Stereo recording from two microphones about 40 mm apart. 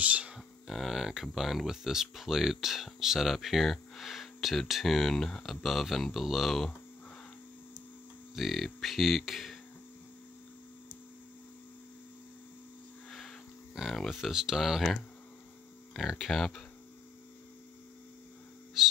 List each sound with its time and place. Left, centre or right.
0.0 s speech: right
0.7 s speech: centre
5.1 s speech: centre
5.4 s speech: centre
8.4 s speech: centre
13.9 s speech: centre
16.1 s speech: centre
18.8 s a sound: centre